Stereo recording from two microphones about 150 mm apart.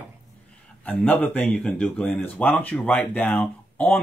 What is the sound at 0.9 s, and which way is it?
Speech, 10° left (ahead or behind).